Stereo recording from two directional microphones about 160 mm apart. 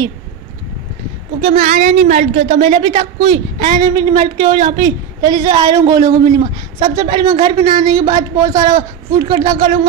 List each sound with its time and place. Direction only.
1.5 s a woman's voice: 45° right (ahead or behind); by 9.7 s 25° right (ahead or behind)